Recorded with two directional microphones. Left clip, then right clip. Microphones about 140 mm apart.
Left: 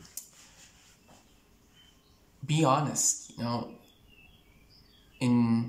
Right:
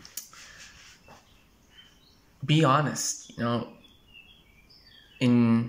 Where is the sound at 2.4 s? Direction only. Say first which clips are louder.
Right 3 dB; 35° left (ahead or behind).